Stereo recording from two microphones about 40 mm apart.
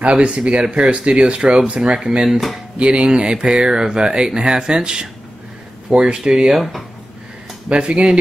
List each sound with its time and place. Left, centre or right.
0.0 s speech: right
2.0 s speech: centre
2.8 s speech: right
6.5 s speech: centre
7.7 s speech: right